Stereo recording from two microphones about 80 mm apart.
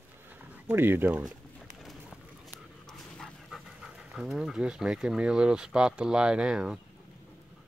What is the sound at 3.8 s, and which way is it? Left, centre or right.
Speech, centre.